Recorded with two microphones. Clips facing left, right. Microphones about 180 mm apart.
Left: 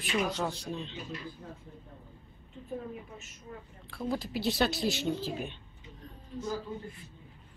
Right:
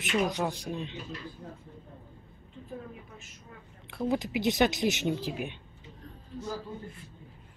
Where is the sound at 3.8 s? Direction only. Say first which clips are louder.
Right 4 dB; 20° right (ahead or behind).